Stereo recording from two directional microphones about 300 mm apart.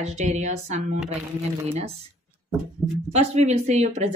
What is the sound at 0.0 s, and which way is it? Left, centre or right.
Speech, right.